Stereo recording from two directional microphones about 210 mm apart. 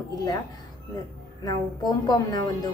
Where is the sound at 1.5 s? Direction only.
20° left (ahead or behind).